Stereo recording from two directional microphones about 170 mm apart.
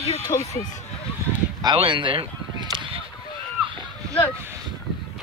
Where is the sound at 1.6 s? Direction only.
30° right (ahead or behind).